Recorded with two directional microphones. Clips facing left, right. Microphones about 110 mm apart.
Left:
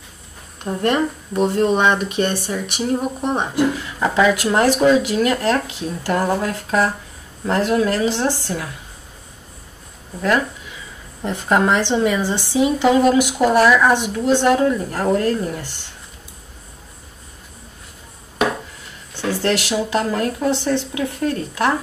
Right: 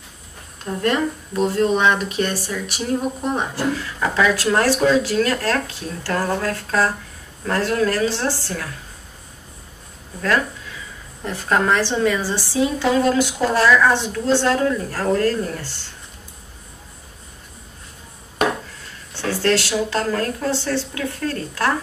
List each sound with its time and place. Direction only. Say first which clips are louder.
0.7 s a woman's voice: left 2 dB; 25° left (ahead or behind)
11.2 s a woman's voice: left 2 dB; 20° left (ahead or behind)
19.1 s a woman's voice: even; 15° left (ahead or behind)